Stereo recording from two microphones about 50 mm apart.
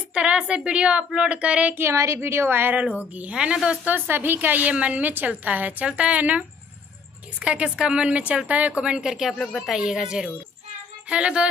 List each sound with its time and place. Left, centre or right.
0.1 s speech: right
1.8 s a woman's voice: right
2.8 s speech: right
3.3 s speech: centre
3.9 s a woman's voice: right
8.8 s a woman's voice: centre